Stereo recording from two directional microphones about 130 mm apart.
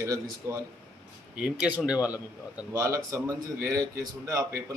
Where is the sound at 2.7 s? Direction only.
25° right (ahead or behind).